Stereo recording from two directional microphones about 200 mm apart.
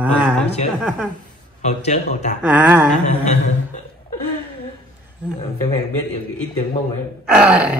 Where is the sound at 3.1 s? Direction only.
35° left (ahead or behind).